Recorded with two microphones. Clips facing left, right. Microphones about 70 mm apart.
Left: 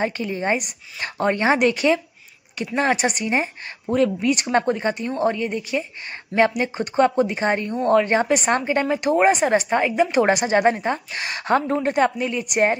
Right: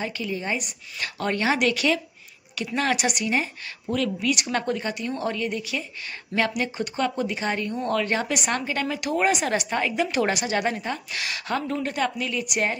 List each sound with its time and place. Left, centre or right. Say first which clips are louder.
0.0 s a woman's voice: left 6 dB; left
10.3 s a woman's voice: left 7 dB; left